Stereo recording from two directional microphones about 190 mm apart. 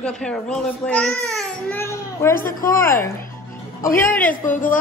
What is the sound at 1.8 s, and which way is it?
Speech, 15° left (ahead or behind).